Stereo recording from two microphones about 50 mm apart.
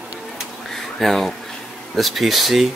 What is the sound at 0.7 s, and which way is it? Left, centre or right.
Speech, centre.